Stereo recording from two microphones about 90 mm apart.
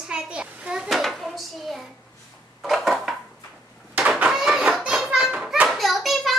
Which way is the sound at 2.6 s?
5° right (ahead or behind).